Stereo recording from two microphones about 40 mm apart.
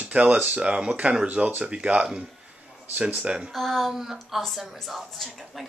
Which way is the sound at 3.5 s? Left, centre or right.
Centre.